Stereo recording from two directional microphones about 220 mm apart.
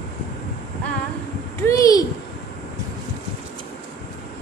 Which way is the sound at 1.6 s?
15° left (ahead or behind).